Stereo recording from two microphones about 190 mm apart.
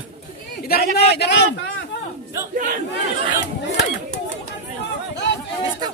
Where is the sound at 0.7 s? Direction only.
60° left (ahead or behind).